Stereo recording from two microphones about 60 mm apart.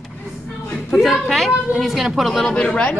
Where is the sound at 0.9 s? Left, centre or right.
Centre.